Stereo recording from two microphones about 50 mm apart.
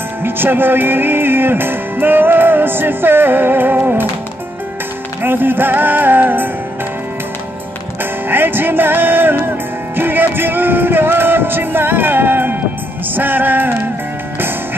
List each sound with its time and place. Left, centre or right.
0.2 s music: right
5.2 s music: right
8.0 s music: right